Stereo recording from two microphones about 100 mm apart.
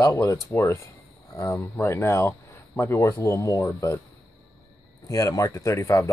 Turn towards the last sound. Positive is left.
turn(degrees=30)  # may be behind; listen again after turning